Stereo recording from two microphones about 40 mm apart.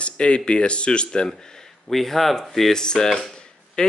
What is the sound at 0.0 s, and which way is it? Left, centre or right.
Speech, left.